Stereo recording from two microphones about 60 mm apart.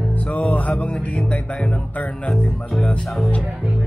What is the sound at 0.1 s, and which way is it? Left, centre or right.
Music, left.